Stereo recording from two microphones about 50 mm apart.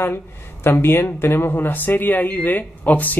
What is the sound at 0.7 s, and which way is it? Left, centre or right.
Speech, left.